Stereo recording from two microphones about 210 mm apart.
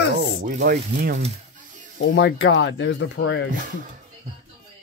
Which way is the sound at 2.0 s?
60° left (ahead or behind).